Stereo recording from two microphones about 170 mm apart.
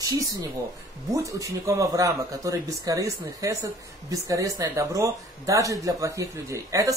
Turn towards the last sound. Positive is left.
turn(degrees=-15)  # may be behind; listen again after turning